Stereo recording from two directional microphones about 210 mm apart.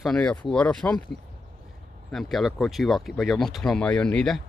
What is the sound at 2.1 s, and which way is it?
Speech, centre (ahead or behind).